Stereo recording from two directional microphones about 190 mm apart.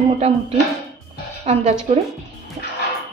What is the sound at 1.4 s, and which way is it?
Speech, 35° right (ahead or behind).